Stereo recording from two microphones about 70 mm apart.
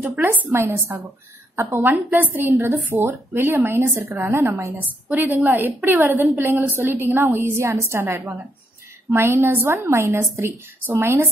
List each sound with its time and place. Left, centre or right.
0.0 s a woman's voice: right
5.1 s a woman's voice: right
8.0 s a woman's voice: right